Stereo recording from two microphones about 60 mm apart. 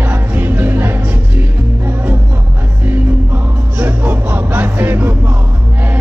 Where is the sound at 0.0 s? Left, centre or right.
Right.